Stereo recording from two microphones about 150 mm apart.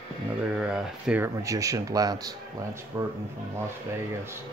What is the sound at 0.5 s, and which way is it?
Speech, 5° right (ahead or behind).